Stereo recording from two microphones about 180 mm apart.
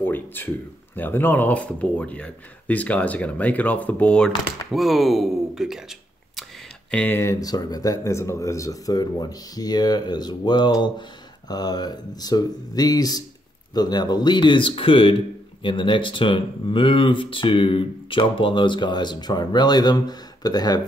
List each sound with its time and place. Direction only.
0.0 s speech: 10° left (ahead or behind)
6.9 s speech: 10° left (ahead or behind)